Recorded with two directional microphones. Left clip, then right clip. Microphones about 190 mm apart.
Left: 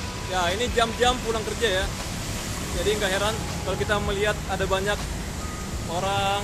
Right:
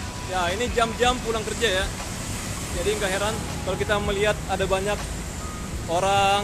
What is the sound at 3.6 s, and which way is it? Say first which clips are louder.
Speech: right 1 dB; 15° right (ahead or behind).